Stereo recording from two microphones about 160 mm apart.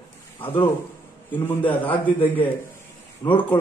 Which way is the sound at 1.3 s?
10° left (ahead or behind).